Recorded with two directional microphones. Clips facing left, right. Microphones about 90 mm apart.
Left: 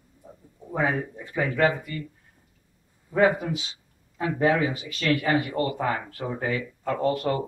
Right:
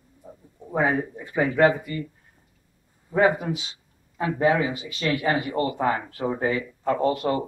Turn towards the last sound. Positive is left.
turn(degrees=-20)  # may be behind; listen again after turning